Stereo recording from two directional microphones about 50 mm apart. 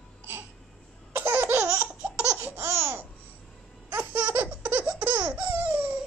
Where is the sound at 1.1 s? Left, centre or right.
Right.